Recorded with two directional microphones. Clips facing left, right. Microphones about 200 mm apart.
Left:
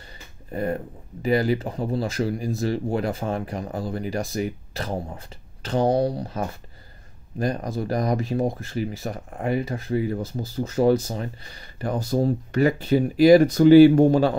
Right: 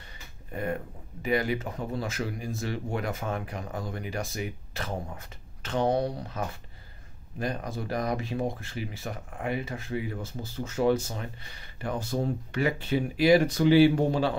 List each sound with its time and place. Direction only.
0.0 s speech: 35° left (ahead or behind)